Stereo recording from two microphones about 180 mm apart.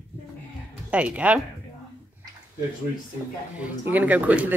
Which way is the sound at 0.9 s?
5° right (ahead or behind).